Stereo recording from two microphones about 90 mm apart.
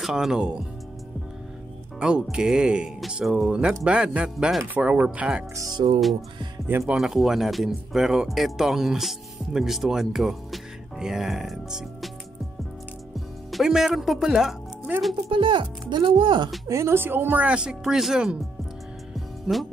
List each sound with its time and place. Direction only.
0.0 s speech: 5° right (ahead or behind)
2.0 s speech: 10° right (ahead or behind)
5.8 s speech: 70° right (ahead or behind)
6.9 s speech: 5° right (ahead or behind)
13.5 s speech: centre (ahead or behind)
15.2 s speech: 70° right (ahead or behind)
16.6 s speech: 30° right (ahead or behind); by 18.4 s 5° right (ahead or behind)
19.5 s speech: 5° right (ahead or behind)